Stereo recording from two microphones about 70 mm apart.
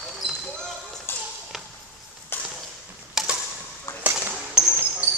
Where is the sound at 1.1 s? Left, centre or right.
Left.